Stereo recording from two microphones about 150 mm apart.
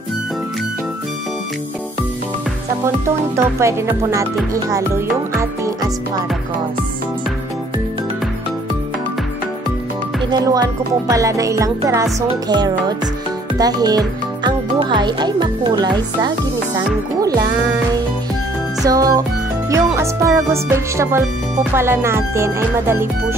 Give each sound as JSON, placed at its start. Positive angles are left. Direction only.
{"t": 3.3, "sound": "speech", "side_deg": -20}
{"t": 4.6, "sound": "music", "side_deg": -20}
{"t": 10.3, "sound": "speech", "side_deg": -25}
{"t": 18.9, "sound": "speech", "side_deg": -25}